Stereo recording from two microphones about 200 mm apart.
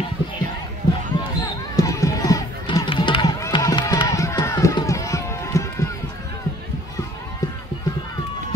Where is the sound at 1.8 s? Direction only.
15° left (ahead or behind).